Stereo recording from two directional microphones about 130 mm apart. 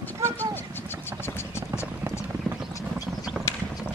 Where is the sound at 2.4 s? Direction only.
5° right (ahead or behind).